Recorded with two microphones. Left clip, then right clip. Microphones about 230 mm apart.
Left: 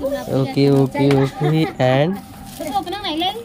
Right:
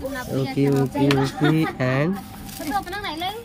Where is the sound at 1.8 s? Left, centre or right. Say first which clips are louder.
Left 7 dB; centre.